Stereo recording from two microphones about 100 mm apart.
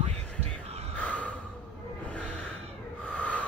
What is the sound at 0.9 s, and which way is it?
Snort, 15° left (ahead or behind).